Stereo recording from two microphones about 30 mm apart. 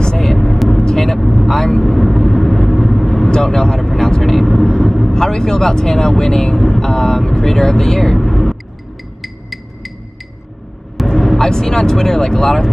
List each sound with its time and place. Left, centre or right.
0.2 s vehicle: centre
3.5 s vehicle: centre
4.2 s vehicle: centre
5.1 s speech: centre
8.2 s vehicle: centre
9.2 s a sound: centre
11.1 s speech: centre